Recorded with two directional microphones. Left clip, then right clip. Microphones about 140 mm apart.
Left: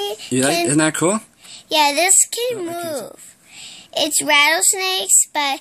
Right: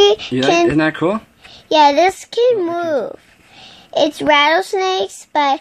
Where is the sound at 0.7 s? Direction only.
40° left (ahead or behind).